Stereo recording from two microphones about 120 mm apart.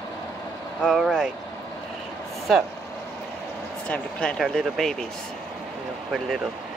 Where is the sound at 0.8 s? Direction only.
Centre (ahead or behind).